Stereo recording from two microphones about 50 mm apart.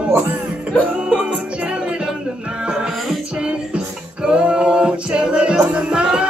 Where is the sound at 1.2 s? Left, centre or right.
Centre.